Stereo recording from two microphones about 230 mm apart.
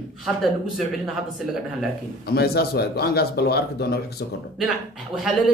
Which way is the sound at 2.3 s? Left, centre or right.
Left.